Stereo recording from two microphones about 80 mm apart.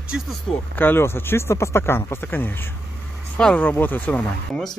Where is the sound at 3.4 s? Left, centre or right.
Centre.